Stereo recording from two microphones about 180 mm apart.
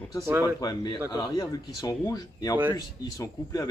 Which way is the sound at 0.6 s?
20° left (ahead or behind).